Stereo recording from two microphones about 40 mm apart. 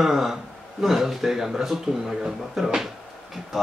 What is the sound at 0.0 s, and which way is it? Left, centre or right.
Mantra, centre.